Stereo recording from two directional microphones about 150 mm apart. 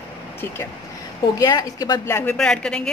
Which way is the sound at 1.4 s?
25° left (ahead or behind).